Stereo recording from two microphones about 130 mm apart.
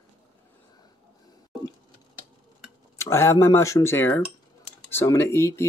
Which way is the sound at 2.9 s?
20° left (ahead or behind).